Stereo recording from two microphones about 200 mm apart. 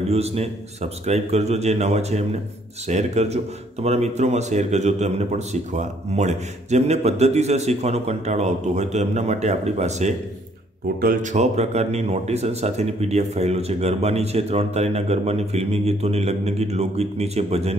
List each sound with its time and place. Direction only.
0.1 s speech: 30° right (ahead or behind)